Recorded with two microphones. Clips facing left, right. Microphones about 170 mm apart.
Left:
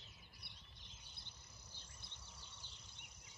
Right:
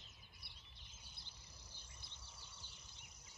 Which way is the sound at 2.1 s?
10° right (ahead or behind).